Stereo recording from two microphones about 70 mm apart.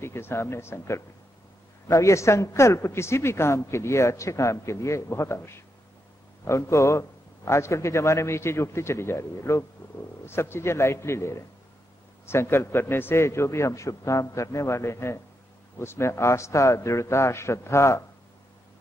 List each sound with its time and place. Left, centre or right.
0.0 s a man's voice: left